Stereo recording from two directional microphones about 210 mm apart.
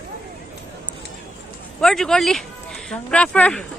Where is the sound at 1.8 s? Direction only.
Centre (ahead or behind).